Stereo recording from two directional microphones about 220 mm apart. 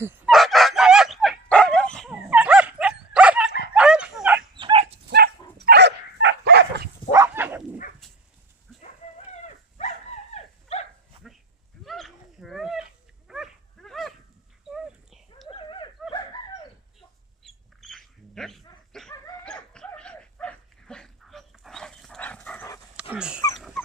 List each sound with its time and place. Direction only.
0.0 s bow-wow: 5° right (ahead or behind)
2.1 s dog: 5° right (ahead or behind)
4.6 s dog: 20° right (ahead or behind)
5.1 s dog: 45° right (ahead or behind)
7.1 s dog: 10° right (ahead or behind)
9.3 s dog: 30° left (ahead or behind)
11.8 s a sound: centre (ahead or behind)
13.3 s dog: centre (ahead or behind)
15.4 s a sound: 20° left (ahead or behind)
17.4 s bird: centre (ahead or behind)
19.4 s dog: 5° left (ahead or behind)
22.9 s dog: 5° right (ahead or behind)